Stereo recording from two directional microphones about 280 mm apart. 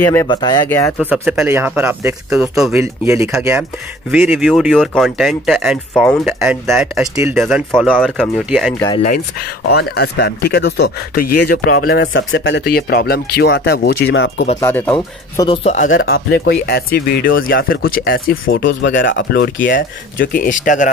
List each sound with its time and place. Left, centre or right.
0.0 s speech: centre
8.7 s speech: centre
9.7 s speech: left
14.6 s speech: centre; by 15.9 s left
15.9 s speech: left